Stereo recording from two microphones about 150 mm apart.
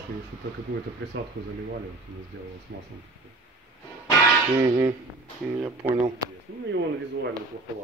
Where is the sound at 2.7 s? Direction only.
90° right.